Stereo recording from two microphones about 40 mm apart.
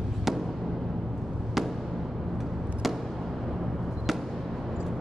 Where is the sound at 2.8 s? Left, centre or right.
Centre.